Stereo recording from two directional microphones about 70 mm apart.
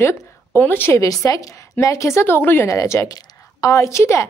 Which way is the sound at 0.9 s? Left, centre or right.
Left.